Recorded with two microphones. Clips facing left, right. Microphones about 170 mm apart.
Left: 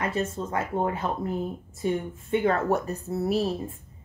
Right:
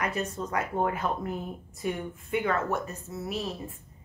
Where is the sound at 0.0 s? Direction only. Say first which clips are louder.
Left 3 dB; 25° left (ahead or behind).